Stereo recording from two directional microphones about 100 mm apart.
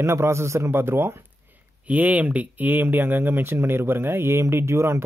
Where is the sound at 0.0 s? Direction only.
25° right (ahead or behind).